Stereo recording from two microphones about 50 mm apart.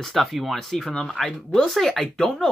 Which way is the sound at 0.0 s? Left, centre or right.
Centre.